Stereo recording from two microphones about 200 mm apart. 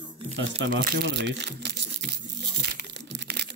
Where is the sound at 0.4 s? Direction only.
55° right (ahead or behind).